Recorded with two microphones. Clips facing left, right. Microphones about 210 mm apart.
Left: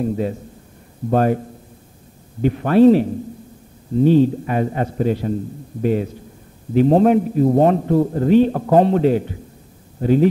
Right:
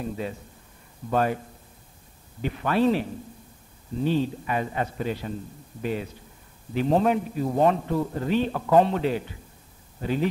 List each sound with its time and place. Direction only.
0.0 s a man's voice: 45° left (ahead or behind)
2.4 s a man's voice: 45° left (ahead or behind)